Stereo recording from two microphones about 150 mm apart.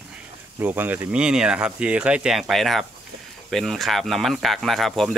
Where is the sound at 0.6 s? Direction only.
15° right (ahead or behind).